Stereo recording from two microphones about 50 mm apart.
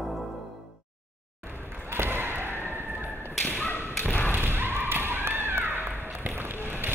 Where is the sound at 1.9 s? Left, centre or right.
Right.